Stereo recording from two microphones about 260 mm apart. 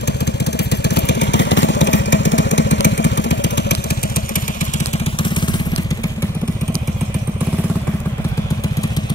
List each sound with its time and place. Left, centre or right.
0.0 s vehicle: left
4.7 s vehicle: left